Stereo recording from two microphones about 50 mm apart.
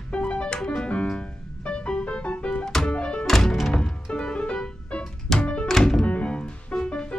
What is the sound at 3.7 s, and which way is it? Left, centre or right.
Music, centre.